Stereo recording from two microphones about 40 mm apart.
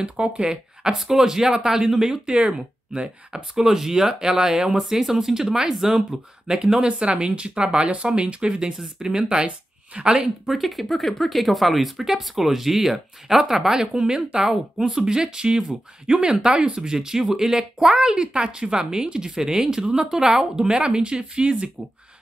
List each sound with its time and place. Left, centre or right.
0.0 s a woman's voice: right
0.9 s speech: centre
2.2 s a woman's voice: right
3.5 s speech: centre
4.8 s speech: centre
6.5 s a woman's voice: centre
10.4 s speech: centre
13.9 s a woman's voice: right